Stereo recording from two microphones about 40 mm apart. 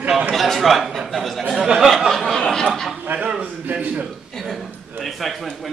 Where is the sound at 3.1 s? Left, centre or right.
Right.